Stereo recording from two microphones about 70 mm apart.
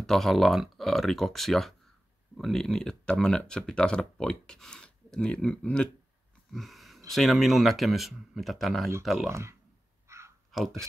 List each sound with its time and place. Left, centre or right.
0.0 s speech: centre
6.5 s a sound: centre
7.1 s speech: centre
9.3 s speech: right
10.0 s a sound: right
10.5 s speech: centre